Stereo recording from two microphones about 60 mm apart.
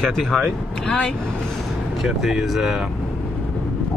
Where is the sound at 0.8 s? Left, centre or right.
Centre.